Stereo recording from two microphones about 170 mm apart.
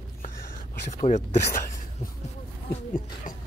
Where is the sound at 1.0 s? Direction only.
45° left (ahead or behind).